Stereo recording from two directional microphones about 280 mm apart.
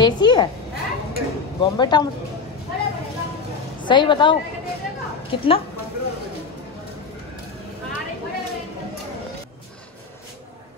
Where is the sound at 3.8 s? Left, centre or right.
Centre.